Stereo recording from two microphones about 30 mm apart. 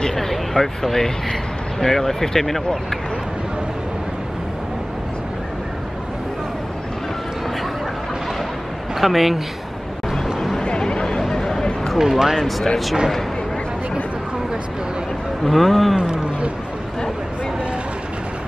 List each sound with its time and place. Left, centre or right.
0.1 s vehicle: centre
1.8 s speech: centre
9.0 s speech: centre
10.2 s a sound: centre
10.6 s a sound: left
11.1 s a sound: centre
12.0 s speech: centre
12.4 s speech: centre
15.4 s speech: centre